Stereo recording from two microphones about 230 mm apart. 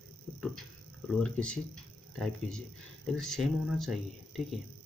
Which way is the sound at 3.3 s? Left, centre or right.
Centre.